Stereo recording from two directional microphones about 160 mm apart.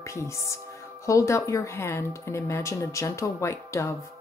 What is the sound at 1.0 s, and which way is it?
Speech, 20° left (ahead or behind).